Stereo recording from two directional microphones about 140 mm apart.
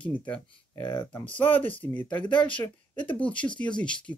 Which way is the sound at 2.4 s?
35° left (ahead or behind).